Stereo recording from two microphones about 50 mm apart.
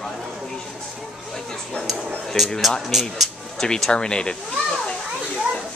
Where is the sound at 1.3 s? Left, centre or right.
Centre.